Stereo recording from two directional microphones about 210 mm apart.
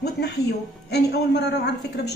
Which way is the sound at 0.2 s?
55° left (ahead or behind).